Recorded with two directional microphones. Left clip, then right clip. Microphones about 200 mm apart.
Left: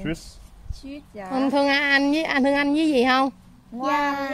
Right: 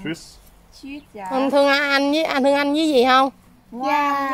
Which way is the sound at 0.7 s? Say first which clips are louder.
Right 3 dB; 25° left (ahead or behind).